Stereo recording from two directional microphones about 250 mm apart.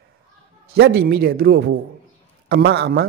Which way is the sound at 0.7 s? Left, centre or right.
Right.